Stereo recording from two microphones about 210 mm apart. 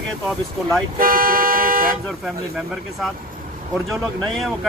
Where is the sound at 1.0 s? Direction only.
40° right (ahead or behind).